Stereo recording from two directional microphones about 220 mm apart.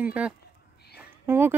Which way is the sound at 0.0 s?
5° right (ahead or behind).